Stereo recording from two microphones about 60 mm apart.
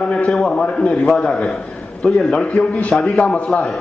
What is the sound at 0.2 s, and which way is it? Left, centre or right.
Speech, centre.